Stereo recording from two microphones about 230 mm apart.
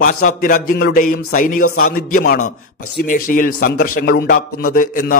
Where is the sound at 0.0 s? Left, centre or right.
Left.